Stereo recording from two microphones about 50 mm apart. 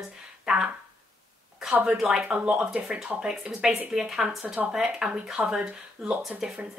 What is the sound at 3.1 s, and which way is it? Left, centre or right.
Speech, centre.